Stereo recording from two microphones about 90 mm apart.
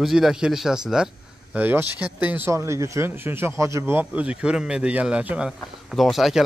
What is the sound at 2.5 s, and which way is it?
Speech, 35° right (ahead or behind).